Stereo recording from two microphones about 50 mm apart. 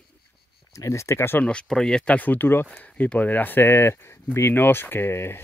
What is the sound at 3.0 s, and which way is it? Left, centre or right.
Speech, left.